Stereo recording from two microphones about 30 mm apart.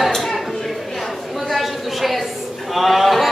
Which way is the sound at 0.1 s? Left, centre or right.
Centre.